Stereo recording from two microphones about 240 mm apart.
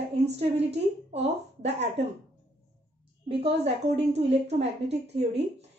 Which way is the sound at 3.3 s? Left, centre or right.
Right.